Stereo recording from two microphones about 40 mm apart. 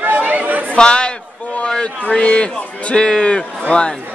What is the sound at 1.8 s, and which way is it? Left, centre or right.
A man's voice, left.